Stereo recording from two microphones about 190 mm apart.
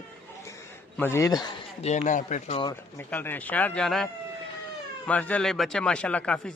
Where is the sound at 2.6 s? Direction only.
20° left (ahead or behind).